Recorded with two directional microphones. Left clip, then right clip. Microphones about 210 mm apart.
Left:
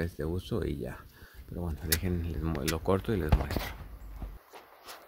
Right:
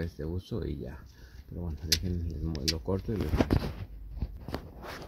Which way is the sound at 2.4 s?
15° left (ahead or behind).